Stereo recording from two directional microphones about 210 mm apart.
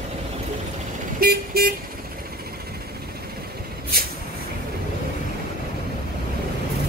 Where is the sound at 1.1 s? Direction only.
45° right (ahead or behind).